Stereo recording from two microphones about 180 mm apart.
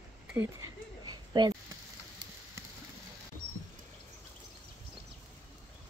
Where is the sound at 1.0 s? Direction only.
25° right (ahead or behind).